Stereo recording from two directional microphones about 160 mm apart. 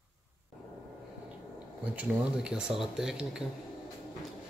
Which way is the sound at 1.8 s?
10° right (ahead or behind).